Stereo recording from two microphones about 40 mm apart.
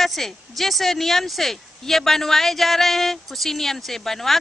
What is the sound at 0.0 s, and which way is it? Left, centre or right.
A woman's voice, centre.